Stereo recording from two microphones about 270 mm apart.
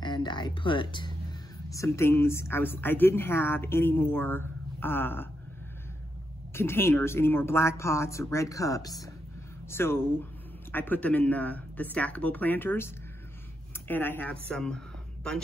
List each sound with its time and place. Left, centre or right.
0.0 s a woman's voice: centre
6.5 s a woman's voice: centre